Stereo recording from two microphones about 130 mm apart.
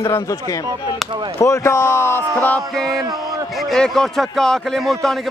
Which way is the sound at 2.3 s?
10° left (ahead or behind).